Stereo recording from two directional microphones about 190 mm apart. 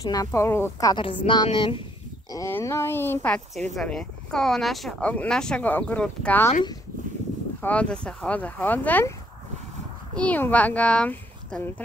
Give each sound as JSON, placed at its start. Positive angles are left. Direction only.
{"t": 0.0, "sound": "a woman's voice", "side_deg": 20}
{"t": 2.3, "sound": "speech", "side_deg": 15}
{"t": 7.6, "sound": "speech", "side_deg": 5}
{"t": 10.1, "sound": "speech", "side_deg": 10}